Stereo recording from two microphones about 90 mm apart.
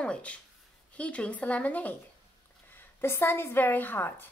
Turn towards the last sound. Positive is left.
turn(degrees=25)  # may be behind; listen again after turning